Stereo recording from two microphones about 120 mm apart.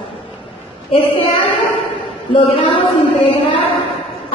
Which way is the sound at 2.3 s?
50° left (ahead or behind).